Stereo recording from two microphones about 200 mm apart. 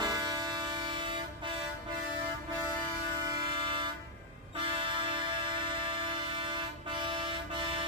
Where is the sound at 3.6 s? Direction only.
25° right (ahead or behind).